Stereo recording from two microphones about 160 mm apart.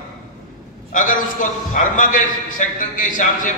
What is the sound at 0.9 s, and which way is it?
A man's voice, 55° left (ahead or behind).